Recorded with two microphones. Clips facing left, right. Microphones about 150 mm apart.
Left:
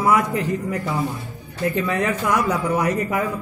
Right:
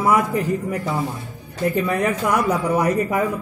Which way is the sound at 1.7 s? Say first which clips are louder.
Right 1 dB; 10° right (ahead or behind).